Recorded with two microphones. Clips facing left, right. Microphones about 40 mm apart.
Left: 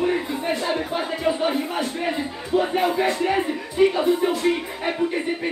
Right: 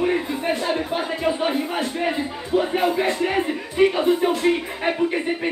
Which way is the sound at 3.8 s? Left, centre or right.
Right.